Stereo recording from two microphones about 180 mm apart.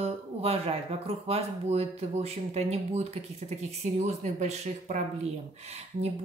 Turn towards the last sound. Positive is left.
turn(degrees=-35)  # may be behind; listen again after turning